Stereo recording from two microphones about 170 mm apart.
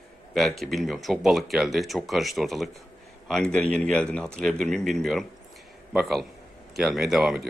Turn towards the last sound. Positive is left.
turn(degrees=0)  # may be behind; listen again after turning